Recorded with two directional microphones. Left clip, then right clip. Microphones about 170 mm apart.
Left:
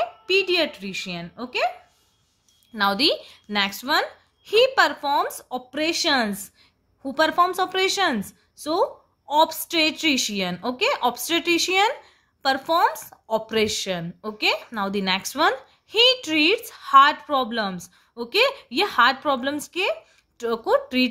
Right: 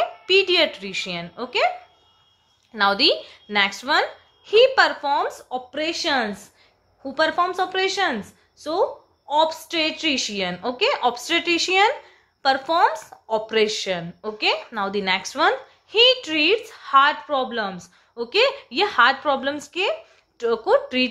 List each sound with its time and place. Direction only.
0.0 s speech: 20° left (ahead or behind)
2.7 s a woman's voice: 25° left (ahead or behind)